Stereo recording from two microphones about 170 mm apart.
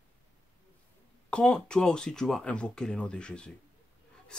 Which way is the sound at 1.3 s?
5° left (ahead or behind).